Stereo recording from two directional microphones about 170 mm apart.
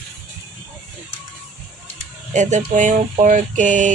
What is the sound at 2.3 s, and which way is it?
Speech, 45° right (ahead or behind).